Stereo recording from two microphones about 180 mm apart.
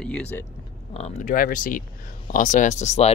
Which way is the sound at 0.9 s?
35° left (ahead or behind).